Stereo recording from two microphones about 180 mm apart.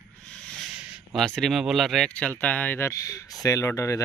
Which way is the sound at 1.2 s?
Centre (ahead or behind).